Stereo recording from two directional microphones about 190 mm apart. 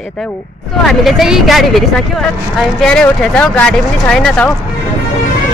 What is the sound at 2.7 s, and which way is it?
Speech, 5° left (ahead or behind).